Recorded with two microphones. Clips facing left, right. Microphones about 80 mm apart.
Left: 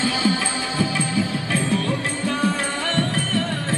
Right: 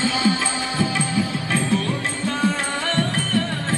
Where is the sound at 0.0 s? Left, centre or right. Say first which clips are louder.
Right 1 dB; right.